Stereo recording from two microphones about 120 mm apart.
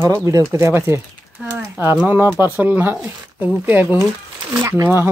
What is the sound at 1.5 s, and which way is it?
Speech, 10° right (ahead or behind).